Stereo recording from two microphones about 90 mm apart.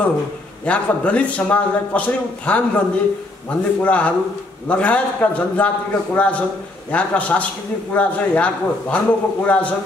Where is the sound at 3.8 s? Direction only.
15° left (ahead or behind).